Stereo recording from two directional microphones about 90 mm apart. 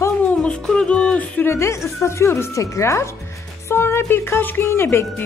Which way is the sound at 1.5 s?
30° left (ahead or behind).